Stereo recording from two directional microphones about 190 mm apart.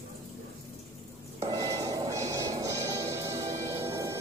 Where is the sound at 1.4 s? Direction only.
20° right (ahead or behind).